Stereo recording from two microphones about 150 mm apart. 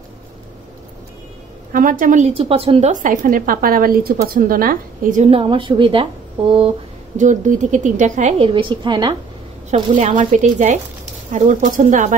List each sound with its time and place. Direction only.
1.7 s speech: 65° right (ahead or behind)
2.4 s a woman's voice: 40° right (ahead or behind)
2.9 s speech: 60° right (ahead or behind)
5.2 s a woman's voice: 40° right (ahead or behind)
7.2 s speech: 55° right (ahead or behind)
8.5 s a woman's voice: 35° right (ahead or behind)
9.9 s speech: 60° right (ahead or behind)